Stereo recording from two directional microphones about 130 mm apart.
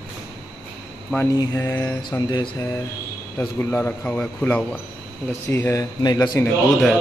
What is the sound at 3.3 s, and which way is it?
A man's voice, 15° left (ahead or behind).